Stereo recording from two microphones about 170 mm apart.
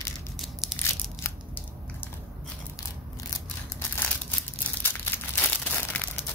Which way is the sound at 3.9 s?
10° left (ahead or behind).